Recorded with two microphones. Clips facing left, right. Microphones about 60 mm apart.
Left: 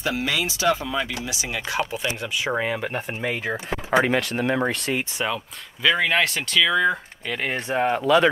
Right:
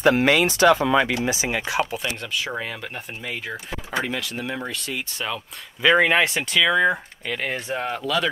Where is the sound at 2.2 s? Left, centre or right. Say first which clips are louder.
Left 3 dB; centre; by 5.0 s left.